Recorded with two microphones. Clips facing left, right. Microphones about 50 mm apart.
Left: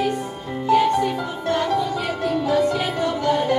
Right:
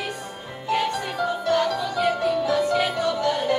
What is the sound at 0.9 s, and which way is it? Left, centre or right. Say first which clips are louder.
Music: left 4 dB; left.